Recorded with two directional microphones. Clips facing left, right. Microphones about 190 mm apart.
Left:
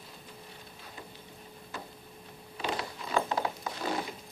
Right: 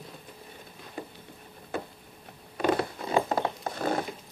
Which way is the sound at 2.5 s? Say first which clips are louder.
Right 9 dB; 55° right (ahead or behind).